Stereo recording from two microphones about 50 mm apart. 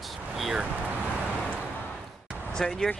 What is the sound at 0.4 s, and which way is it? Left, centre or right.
Vehicle, centre.